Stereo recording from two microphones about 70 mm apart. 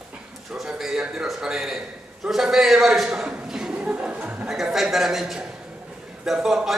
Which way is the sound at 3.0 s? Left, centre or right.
Centre.